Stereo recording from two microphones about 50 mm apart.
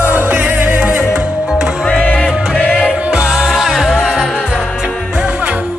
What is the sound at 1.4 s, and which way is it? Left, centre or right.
Music, centre.